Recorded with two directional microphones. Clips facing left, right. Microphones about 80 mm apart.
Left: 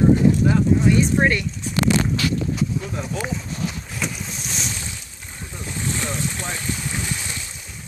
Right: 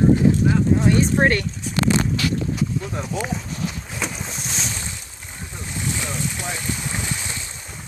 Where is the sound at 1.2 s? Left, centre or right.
Right.